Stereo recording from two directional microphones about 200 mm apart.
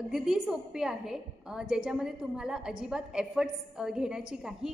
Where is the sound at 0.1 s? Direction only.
5° right (ahead or behind).